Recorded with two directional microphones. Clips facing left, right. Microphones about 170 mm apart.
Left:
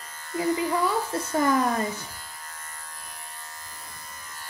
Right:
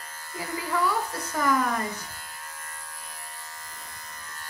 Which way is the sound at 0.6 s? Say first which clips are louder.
Left 2 dB; 25° left (ahead or behind).